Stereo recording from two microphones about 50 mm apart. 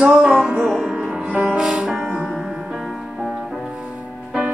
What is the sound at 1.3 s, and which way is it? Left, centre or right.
Music, centre.